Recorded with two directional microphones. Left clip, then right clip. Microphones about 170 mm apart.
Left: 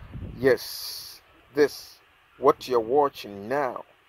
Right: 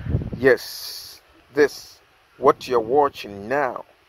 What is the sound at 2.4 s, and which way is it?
Speech, 10° left (ahead or behind).